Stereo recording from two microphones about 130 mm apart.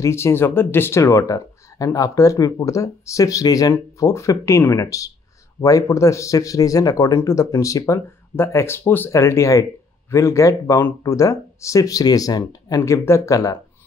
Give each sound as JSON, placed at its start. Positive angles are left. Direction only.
{"t": 0.0, "sound": "speech", "side_deg": 20}